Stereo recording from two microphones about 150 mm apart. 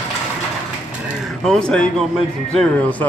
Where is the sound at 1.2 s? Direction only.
Centre (ahead or behind).